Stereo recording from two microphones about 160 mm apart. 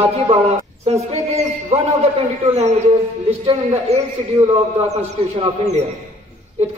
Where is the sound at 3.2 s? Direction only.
45° right (ahead or behind).